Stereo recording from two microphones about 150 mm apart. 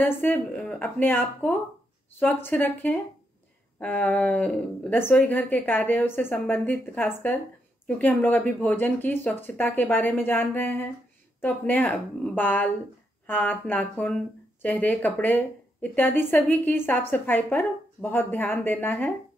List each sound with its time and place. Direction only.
0.0 s a woman's voice: 15° left (ahead or behind)